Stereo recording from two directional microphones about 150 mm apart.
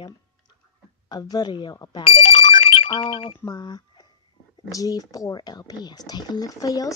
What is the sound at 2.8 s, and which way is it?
A woman's voice, 40° left (ahead or behind).